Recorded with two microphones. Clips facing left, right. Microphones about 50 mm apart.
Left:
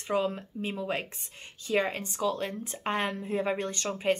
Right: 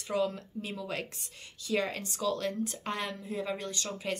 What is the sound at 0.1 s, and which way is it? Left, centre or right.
Speech, left.